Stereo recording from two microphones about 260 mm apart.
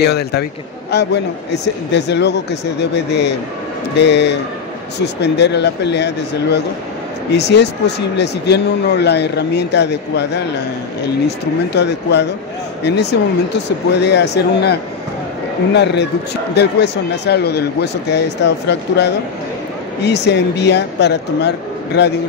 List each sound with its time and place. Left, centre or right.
0.0 s a man's voice: left
11.7 s a man's voice: left